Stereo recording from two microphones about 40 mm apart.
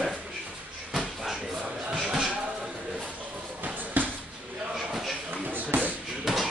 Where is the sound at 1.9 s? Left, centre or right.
Centre.